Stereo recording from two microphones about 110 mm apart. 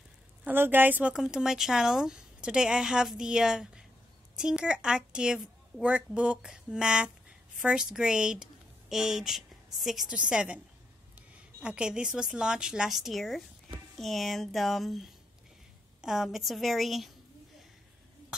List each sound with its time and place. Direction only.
0.5 s a woman's voice: 20° right (ahead or behind)
1.1 s a woman's voice: 5° right (ahead or behind)